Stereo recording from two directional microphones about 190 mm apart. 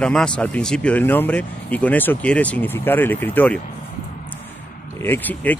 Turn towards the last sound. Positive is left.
turn(degrees=10)  # may be behind; listen again after turning